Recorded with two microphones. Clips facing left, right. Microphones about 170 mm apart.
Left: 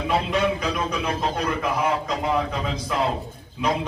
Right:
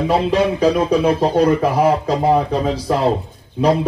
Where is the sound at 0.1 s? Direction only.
35° right (ahead or behind).